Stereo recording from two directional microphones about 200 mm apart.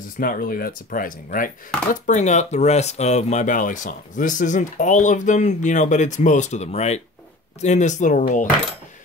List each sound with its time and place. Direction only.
0.2 s speech: 45° left (ahead or behind)